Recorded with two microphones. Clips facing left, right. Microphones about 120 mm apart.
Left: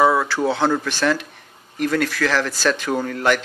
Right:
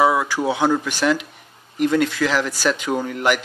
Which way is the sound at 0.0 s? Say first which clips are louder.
Left 1 dB; 10° right (ahead or behind).